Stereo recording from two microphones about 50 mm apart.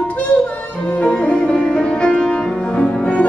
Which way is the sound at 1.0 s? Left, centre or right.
Left.